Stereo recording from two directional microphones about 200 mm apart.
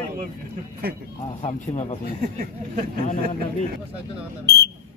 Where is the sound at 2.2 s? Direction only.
40° right (ahead or behind).